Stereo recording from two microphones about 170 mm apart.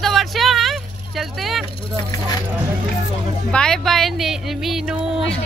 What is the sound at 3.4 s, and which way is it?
Speech, 5° left (ahead or behind).